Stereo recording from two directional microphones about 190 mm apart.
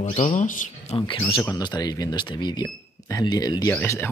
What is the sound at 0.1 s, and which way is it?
Speech, 40° left (ahead or behind).